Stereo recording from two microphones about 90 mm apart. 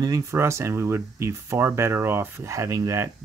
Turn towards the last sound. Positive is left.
turn(degrees=-40)  # may be behind; listen again after turning